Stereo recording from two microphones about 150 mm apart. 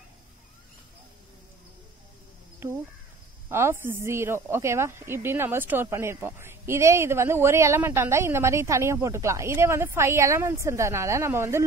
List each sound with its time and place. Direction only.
2.6 s speech: 15° right (ahead or behind)